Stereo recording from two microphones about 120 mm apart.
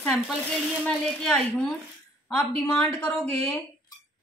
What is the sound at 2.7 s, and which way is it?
Speech, 10° left (ahead or behind).